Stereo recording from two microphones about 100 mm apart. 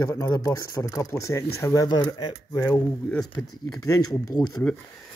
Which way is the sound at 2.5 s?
30° left (ahead or behind).